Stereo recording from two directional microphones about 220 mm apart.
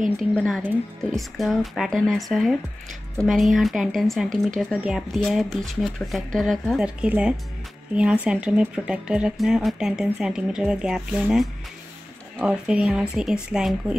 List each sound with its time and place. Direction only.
0.2 s speech: centre (ahead or behind)